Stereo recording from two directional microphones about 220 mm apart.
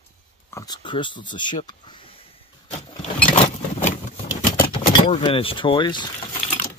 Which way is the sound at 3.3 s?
30° left (ahead or behind).